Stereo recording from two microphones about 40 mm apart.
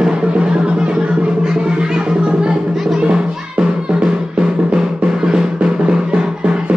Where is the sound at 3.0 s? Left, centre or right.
Right.